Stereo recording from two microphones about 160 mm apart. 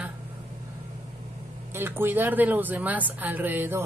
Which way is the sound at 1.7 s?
15° right (ahead or behind).